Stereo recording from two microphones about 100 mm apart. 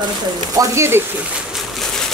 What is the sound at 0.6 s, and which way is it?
Speech, 25° right (ahead or behind).